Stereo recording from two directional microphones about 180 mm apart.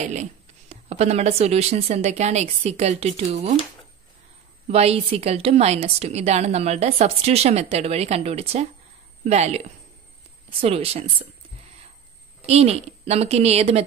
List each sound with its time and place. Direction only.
0.0 s a woman's voice: 40° right (ahead or behind)
4.6 s a woman's voice: 35° right (ahead or behind)
10.6 s a woman's voice: 35° right (ahead or behind)
12.4 s a woman's voice: 35° right (ahead or behind)